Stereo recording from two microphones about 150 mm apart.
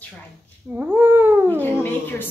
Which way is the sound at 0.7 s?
15° right (ahead or behind).